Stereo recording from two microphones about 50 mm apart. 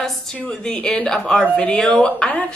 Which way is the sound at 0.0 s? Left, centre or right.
Centre.